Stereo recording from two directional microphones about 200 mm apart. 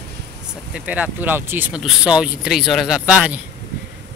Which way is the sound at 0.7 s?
5° right (ahead or behind).